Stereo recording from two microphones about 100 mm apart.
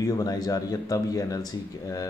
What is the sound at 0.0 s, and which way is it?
Speech, 35° left (ahead or behind).